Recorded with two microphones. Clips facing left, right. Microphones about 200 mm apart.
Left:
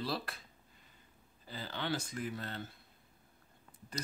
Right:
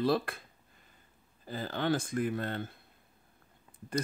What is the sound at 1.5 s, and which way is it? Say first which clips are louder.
Speech: right 7 dB; 50° right (ahead or behind).